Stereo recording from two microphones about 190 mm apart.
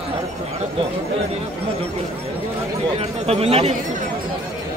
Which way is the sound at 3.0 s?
30° right (ahead or behind).